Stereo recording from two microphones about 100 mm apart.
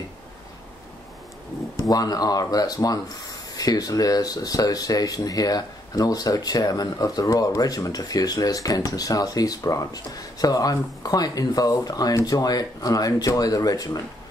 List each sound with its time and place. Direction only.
1.9 s speech: 40° left (ahead or behind)